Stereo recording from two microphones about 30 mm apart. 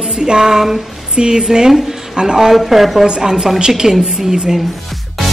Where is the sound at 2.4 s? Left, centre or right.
Centre.